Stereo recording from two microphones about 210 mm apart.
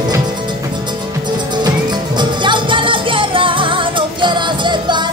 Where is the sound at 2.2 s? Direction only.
20° right (ahead or behind).